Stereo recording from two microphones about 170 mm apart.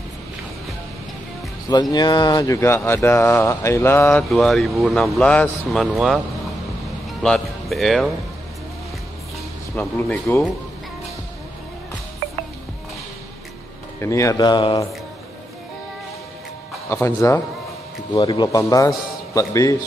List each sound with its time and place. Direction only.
1.7 s speech: 25° left (ahead or behind)
4.3 s speech: centre (ahead or behind)
9.8 s speech: 5° left (ahead or behind)
13.9 s speech: 15° left (ahead or behind)
16.9 s speech: 15° left (ahead or behind)
18.1 s speech: 25° left (ahead or behind)